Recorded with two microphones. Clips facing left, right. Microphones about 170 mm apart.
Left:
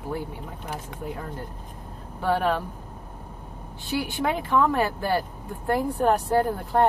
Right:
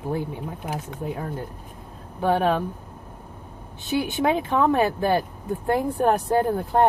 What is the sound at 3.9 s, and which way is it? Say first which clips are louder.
Speech: right 4 dB; 20° right (ahead or behind).